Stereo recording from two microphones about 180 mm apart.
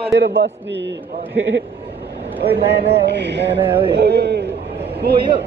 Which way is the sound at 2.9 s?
70° right (ahead or behind).